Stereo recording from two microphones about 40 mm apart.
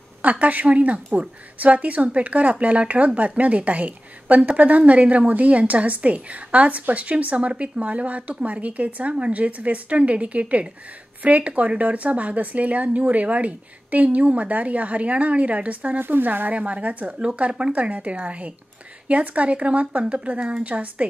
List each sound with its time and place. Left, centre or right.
0.2 s a woman's voice: right
16.0 s speech: right
16.5 s a woman's voice: right
17.7 s a woman's voice: right